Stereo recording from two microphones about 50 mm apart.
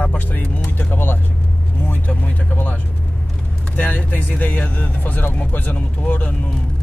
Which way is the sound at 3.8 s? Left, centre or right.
Left.